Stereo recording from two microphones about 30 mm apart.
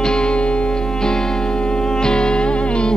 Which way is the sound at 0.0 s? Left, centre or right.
Left.